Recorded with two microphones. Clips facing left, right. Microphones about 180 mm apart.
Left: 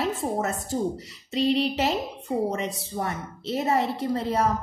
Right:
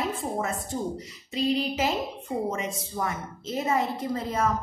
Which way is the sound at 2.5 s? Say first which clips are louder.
Left 2 dB; 35° left (ahead or behind).